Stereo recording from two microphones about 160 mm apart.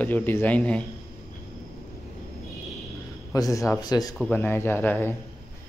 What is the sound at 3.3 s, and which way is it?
Speech, 20° left (ahead or behind).